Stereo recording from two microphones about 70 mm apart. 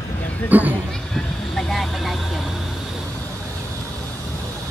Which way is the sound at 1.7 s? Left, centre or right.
Centre.